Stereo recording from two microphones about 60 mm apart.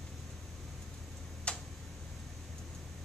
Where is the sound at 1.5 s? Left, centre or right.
Centre.